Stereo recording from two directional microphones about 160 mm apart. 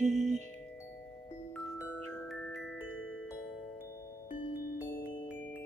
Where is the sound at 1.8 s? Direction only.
Centre (ahead or behind).